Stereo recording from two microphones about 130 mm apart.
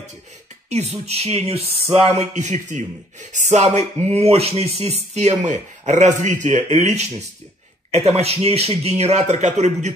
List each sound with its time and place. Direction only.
0.7 s speech: 55° right (ahead or behind)
2.1 s speech: 65° right (ahead or behind)